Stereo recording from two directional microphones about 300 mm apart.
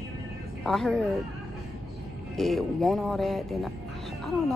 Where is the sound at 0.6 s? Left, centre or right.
Centre.